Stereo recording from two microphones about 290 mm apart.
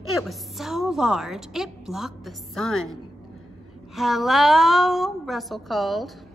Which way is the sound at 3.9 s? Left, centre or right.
Centre.